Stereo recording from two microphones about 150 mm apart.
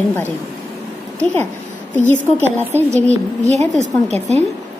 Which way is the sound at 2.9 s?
45° right (ahead or behind).